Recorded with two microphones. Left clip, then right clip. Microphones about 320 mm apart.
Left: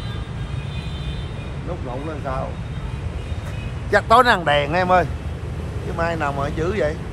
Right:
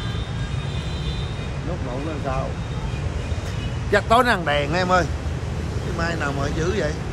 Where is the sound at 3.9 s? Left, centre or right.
Centre.